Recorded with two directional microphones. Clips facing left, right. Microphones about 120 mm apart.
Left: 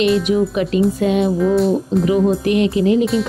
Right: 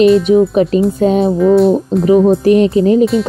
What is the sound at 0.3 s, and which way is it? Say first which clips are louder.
Speech: right 7 dB; 30° right (ahead or behind).